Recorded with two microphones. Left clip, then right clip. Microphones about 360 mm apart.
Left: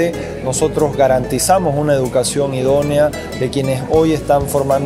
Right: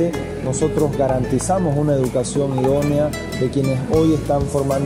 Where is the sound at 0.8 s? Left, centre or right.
Left.